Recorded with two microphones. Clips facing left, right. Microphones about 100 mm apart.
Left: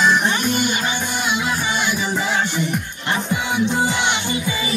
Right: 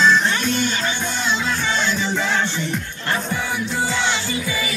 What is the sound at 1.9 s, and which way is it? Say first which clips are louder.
Music: even; 15° left (ahead or behind).